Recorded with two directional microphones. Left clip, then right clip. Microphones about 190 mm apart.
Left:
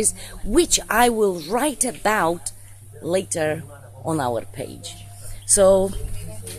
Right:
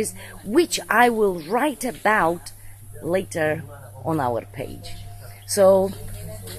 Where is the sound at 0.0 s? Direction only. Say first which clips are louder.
Left 2 dB; 20° left (ahead or behind).